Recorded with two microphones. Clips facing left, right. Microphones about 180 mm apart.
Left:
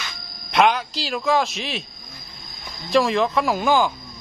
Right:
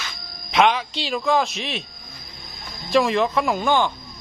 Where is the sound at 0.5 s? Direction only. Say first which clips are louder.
Even; centre (ahead or behind).